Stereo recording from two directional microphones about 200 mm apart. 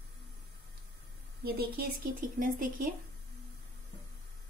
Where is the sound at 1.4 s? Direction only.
50° right (ahead or behind).